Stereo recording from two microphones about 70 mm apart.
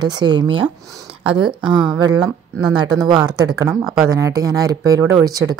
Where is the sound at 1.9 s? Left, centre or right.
Right.